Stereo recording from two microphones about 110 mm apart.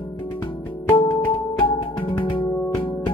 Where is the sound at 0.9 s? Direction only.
50° left (ahead or behind).